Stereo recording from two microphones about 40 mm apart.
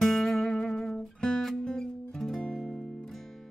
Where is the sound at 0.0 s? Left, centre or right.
Centre.